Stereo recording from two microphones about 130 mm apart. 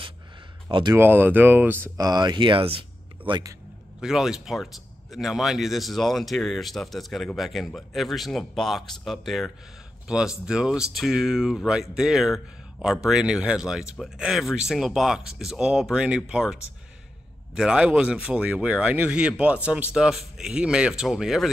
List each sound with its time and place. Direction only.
0.7 s speech: 40° right (ahead or behind)
0.9 s speech: 15° right (ahead or behind)
2.0 s speech: 30° right (ahead or behind)
4.0 s speech: 5° right (ahead or behind)
17.6 s speech: 5° right (ahead or behind)